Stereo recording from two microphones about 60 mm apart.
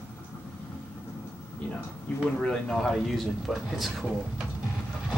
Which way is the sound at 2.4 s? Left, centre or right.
Centre.